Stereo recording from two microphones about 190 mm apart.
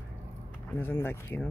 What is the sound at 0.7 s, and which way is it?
Speech, 10° left (ahead or behind).